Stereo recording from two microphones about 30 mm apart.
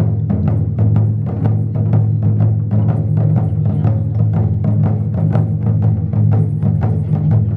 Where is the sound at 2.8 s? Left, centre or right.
Left.